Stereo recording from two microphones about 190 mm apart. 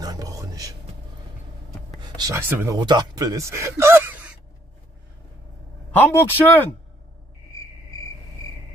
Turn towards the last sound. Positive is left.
turn(degrees=15)  # may be behind; listen again after turning